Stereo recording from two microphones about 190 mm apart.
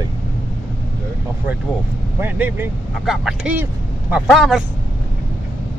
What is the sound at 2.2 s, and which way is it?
Speech, 10° right (ahead or behind).